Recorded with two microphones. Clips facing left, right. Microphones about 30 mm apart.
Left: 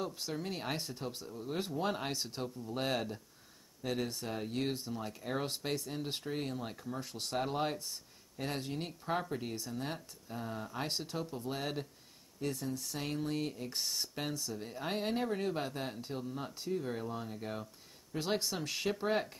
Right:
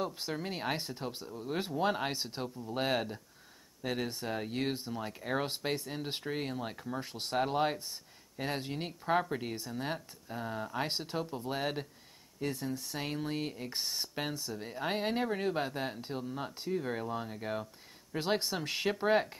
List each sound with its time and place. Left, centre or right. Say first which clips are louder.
0.0 s speech: right 2 dB; centre